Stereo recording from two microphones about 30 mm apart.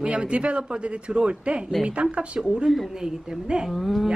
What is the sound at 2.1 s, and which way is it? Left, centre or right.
Speech, right.